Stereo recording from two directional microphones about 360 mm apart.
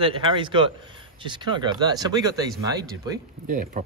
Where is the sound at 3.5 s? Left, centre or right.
Right.